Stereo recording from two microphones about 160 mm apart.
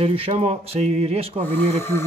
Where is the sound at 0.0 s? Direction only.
35° right (ahead or behind).